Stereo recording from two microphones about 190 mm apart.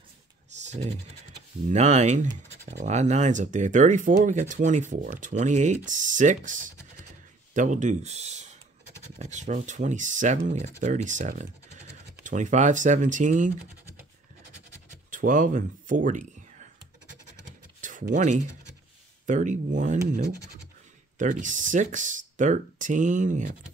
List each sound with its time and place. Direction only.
0.5 s computer keyboard: 35° right (ahead or behind)
1.7 s speech: 35° right (ahead or behind)
15.0 s speech: 45° right (ahead or behind)
17.5 s computer keyboard: 45° right (ahead or behind)
19.2 s speech: 40° right (ahead or behind)
21.2 s speech: 40° right (ahead or behind)